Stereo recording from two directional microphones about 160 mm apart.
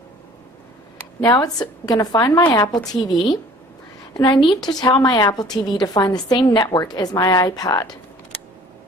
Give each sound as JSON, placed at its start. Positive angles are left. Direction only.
{"t": 1.3, "sound": "a woman's voice", "side_deg": 25}